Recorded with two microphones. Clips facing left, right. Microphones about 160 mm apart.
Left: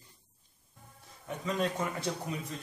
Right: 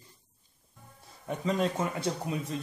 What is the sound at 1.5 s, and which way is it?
Speech, 25° right (ahead or behind).